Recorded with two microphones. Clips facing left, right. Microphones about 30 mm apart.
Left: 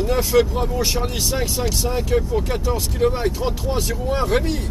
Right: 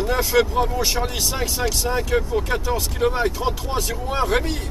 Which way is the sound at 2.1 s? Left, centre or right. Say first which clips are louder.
Left 2 dB; centre.